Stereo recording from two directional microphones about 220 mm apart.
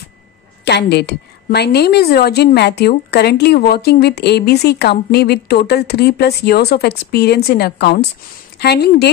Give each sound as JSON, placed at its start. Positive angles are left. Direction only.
{"t": 0.7, "sound": "a woman's voice", "side_deg": 50}